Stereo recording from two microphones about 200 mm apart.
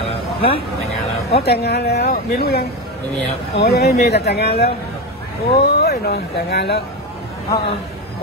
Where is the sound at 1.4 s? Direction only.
55° left (ahead or behind).